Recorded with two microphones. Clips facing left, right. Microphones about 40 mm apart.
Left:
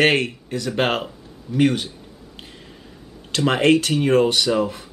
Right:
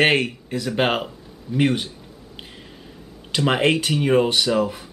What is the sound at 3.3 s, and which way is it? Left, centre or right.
Speech, centre.